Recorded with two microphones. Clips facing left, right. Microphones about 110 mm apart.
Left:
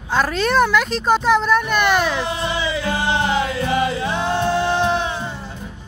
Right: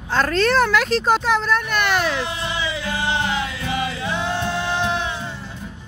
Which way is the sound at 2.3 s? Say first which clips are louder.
Left 4 dB; 35° left (ahead or behind).